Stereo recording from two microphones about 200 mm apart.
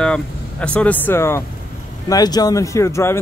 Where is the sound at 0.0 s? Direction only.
5° left (ahead or behind).